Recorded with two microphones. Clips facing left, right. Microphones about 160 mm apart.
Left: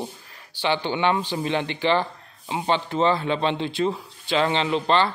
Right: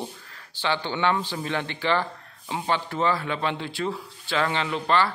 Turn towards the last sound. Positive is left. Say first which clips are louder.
# left 3 dB
turn(degrees=25)  # may be behind; listen again after turning